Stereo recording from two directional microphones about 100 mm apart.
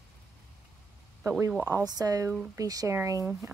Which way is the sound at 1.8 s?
40° right (ahead or behind).